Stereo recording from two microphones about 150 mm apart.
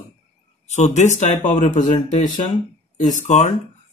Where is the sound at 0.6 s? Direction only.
50° left (ahead or behind).